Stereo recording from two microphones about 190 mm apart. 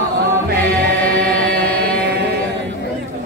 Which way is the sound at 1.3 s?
50° right (ahead or behind).